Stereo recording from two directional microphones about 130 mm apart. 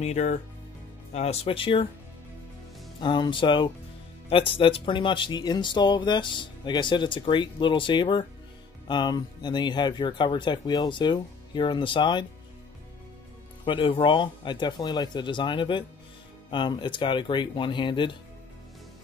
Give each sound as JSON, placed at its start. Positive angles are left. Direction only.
{"t": 0.0, "sound": "speech", "side_deg": 60}
{"t": 3.0, "sound": "speech", "side_deg": 35}
{"t": 13.7, "sound": "speech", "side_deg": 40}